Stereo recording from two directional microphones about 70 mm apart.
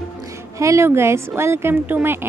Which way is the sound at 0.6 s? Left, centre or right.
Right.